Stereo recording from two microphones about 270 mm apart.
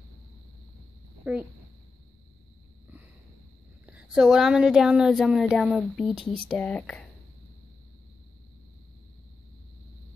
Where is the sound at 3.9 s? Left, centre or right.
Centre.